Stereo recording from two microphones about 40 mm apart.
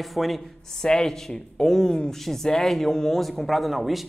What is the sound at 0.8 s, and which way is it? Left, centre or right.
Speech, centre.